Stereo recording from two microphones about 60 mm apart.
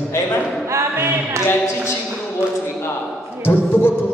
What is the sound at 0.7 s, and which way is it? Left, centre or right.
Music, right.